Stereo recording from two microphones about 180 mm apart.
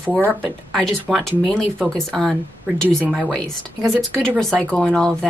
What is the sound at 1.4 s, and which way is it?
Speech, 5° left (ahead or behind).